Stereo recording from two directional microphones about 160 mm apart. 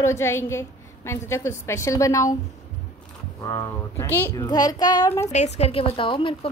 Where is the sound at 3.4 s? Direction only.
20° left (ahead or behind).